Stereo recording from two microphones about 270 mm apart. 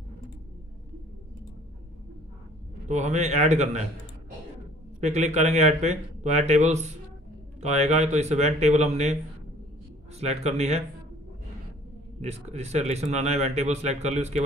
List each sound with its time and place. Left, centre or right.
2.9 s speech: right
5.0 s speech: right
12.2 s speech: right